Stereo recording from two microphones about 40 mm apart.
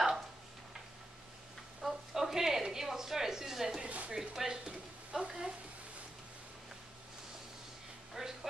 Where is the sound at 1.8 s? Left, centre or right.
Centre.